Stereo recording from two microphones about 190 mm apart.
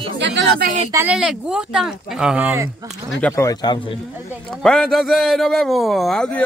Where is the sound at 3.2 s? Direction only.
10° left (ahead or behind).